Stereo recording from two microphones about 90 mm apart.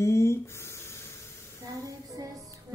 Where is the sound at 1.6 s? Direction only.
40° right (ahead or behind).